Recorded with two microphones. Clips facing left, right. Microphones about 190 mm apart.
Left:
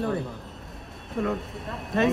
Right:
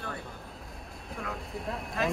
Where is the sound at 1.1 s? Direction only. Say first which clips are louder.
Left 10 dB; centre (ahead or behind).